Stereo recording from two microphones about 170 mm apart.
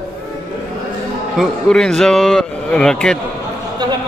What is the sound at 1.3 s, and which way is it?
A man's voice, centre (ahead or behind).